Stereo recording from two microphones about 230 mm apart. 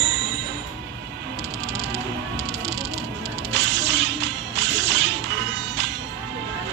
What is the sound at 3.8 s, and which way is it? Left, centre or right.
Music, right.